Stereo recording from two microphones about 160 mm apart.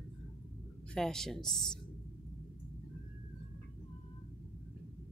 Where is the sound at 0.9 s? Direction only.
5° left (ahead or behind).